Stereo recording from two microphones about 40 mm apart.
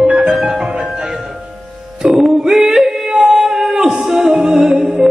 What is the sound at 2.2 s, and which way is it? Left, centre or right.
Female singing, centre.